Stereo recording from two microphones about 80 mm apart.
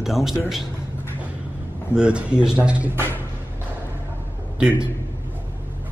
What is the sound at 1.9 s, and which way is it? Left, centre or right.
Speech, centre.